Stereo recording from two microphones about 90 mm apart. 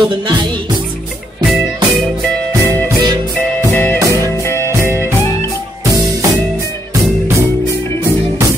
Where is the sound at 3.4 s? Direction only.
25° left (ahead or behind).